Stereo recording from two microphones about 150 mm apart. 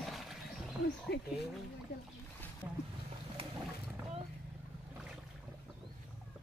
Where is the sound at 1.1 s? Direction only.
90° left.